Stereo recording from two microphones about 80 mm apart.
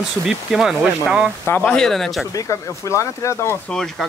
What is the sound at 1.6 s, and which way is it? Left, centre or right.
Speech, centre.